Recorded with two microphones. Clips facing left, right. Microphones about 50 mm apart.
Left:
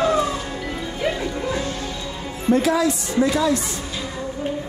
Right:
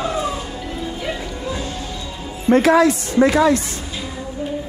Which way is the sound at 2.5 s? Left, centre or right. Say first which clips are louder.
Right 5 dB; right.